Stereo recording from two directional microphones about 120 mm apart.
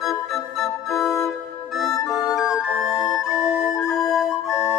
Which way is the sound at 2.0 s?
25° left (ahead or behind).